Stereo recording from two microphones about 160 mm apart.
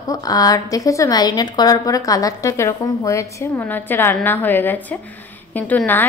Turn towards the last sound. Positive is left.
turn(degrees=10)  # may be behind; listen again after turning